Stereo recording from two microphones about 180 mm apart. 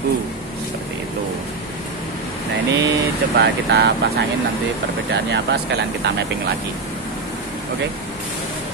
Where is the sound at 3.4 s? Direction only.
70° right (ahead or behind).